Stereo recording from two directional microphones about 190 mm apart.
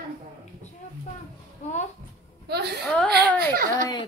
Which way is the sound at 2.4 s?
60° right (ahead or behind).